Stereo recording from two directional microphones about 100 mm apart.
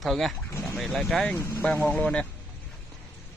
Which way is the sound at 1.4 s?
30° left (ahead or behind).